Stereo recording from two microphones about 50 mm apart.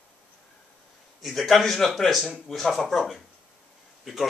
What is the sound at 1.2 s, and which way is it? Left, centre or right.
A man's voice, centre.